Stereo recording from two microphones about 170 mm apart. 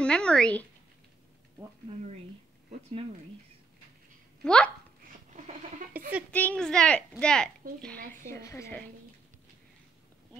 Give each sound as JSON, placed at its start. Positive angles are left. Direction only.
{"t": 0.0, "sound": "speech", "side_deg": 5}
{"t": 4.4, "sound": "a woman's voice", "side_deg": 5}
{"t": 5.9, "sound": "a sound", "side_deg": -10}
{"t": 6.3, "sound": "a woman's voice", "side_deg": 5}
{"t": 8.3, "sound": "a woman's voice", "side_deg": 15}